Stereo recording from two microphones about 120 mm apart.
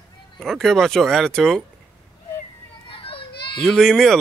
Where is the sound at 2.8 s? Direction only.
45° left (ahead or behind).